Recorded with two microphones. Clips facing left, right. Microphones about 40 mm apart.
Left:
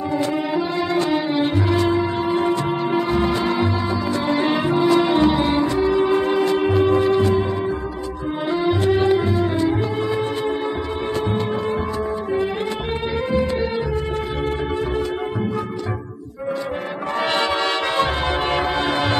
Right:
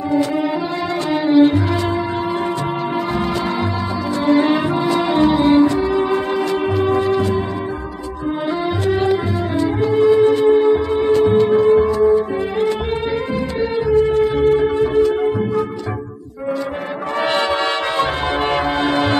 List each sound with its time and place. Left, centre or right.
1.1 s music: centre
6.1 s music: centre
9.9 s music: centre
15.0 s music: left
18.5 s music: centre